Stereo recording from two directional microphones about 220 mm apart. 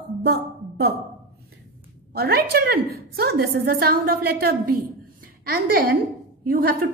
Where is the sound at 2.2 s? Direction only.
45° right (ahead or behind).